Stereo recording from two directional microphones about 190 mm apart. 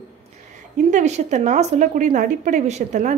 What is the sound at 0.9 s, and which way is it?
A woman's voice, 40° right (ahead or behind).